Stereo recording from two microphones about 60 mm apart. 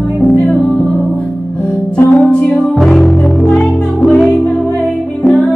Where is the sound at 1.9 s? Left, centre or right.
Left.